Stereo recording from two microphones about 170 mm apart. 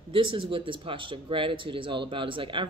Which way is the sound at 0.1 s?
30° right (ahead or behind).